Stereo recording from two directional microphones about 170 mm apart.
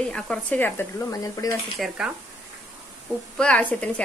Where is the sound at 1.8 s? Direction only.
Centre (ahead or behind).